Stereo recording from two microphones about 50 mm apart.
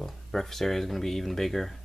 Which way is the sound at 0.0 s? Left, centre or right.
Centre.